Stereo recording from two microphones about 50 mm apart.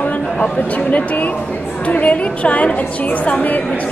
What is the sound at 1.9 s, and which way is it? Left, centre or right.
Speech, left.